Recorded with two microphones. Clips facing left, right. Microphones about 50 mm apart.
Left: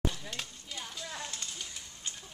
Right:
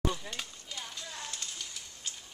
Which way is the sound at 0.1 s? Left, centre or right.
Centre.